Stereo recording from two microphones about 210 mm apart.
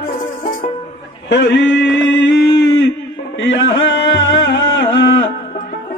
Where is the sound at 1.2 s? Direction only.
55° left (ahead or behind).